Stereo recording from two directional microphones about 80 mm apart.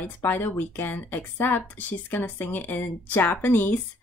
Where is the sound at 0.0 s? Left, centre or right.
Left.